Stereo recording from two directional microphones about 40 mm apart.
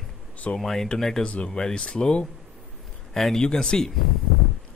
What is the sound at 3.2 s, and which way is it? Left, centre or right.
Speech, centre.